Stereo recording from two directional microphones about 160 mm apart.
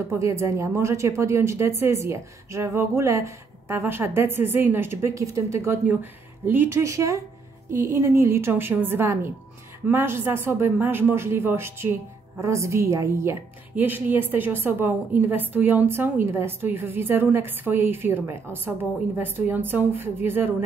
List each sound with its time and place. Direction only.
0.1 s speech: 20° right (ahead or behind)